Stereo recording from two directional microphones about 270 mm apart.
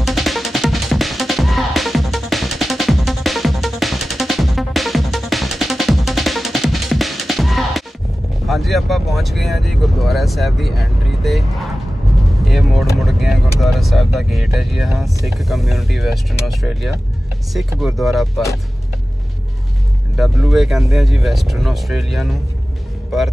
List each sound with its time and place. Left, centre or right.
0.0 s music: centre
8.5 s vehicle: centre
12.4 s vehicle: centre
13.6 s speech: centre
20.2 s speech: centre